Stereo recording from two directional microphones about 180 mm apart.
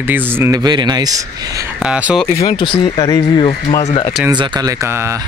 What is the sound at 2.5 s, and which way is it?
Speech, 30° left (ahead or behind).